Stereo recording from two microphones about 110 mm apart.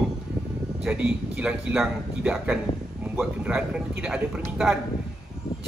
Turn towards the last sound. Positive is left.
turn(degrees=-5)  # may be behind; listen again after turning